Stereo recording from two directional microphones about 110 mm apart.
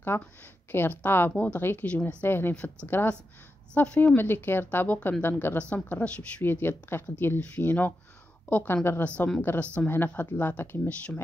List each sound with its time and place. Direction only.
0.1 s speech: 20° left (ahead or behind)